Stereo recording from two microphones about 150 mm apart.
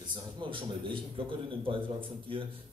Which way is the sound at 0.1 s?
35° right (ahead or behind).